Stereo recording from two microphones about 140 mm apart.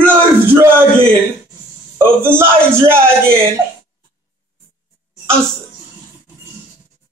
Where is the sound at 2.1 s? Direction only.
15° right (ahead or behind).